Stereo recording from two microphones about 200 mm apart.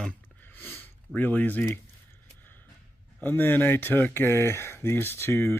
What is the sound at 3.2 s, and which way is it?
Speech, 10° left (ahead or behind).